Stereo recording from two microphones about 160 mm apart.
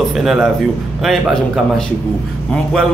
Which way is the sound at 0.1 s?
Centre (ahead or behind).